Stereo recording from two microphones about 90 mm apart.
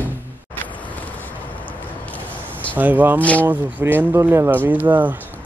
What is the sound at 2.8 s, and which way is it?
Speech, 20° right (ahead or behind).